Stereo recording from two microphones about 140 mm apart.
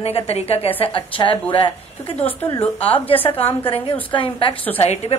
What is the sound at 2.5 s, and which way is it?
A woman's voice, 40° left (ahead or behind).